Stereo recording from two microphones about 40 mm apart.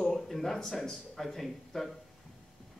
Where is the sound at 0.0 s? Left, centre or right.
Centre.